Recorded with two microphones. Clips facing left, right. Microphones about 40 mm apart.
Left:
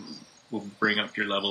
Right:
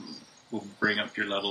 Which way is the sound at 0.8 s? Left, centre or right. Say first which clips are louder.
Left 2 dB; centre.